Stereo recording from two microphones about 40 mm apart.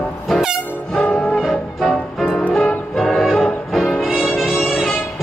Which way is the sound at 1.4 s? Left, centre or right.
Centre.